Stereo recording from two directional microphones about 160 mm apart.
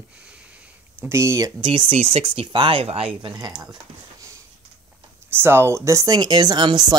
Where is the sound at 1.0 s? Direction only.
20° right (ahead or behind).